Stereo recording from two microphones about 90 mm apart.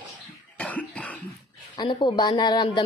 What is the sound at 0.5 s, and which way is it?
Cough, 15° left (ahead or behind).